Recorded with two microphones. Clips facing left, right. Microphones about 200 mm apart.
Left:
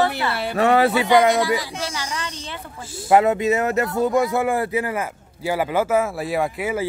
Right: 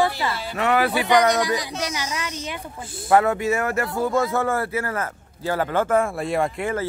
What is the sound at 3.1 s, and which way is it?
Speech, 20° left (ahead or behind).